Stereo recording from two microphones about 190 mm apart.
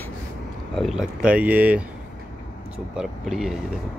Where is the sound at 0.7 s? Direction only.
Centre (ahead or behind).